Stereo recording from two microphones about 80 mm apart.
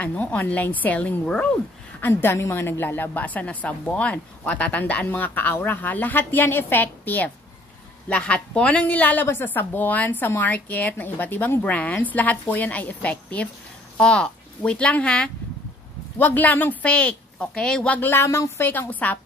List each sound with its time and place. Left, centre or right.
0.0 s a woman's voice: centre
2.0 s a woman's voice: left
18.1 s speech: left
18.7 s a woman's voice: left